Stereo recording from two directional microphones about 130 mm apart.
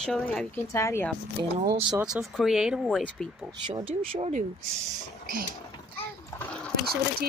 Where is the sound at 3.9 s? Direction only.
45° right (ahead or behind).